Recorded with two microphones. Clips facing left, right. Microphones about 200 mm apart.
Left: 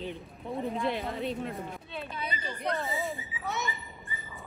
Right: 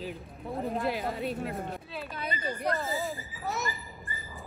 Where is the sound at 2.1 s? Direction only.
50° right (ahead or behind).